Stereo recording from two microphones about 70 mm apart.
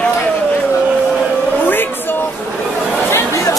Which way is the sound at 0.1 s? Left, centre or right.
Left.